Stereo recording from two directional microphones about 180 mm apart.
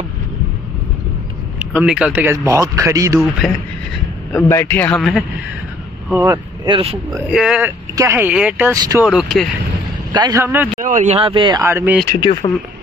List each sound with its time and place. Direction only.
1.6 s a man's voice: 5° right (ahead or behind)
3.2 s speech: centre (ahead or behind)
4.3 s a man's voice: 15° left (ahead or behind)
6.2 s speech: 20° right (ahead or behind)
7.2 s speech: 5° right (ahead or behind)
7.9 s a man's voice: 15° right (ahead or behind)
9.0 s speech: centre (ahead or behind)
10.1 s a man's voice: 20° right (ahead or behind)
10.8 s speech: 45° right (ahead or behind); by 11.6 s 25° right (ahead or behind)
11.6 s a man's voice: 10° right (ahead or behind)
12.2 s speech: 25° left (ahead or behind)